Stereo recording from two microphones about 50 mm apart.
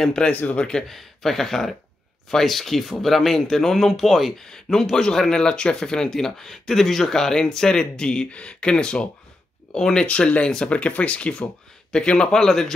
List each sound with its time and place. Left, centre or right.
0.0 s speech: centre
0.3 s speech: left
0.6 s speech: centre
0.8 s speech: centre
10.0 s speech: left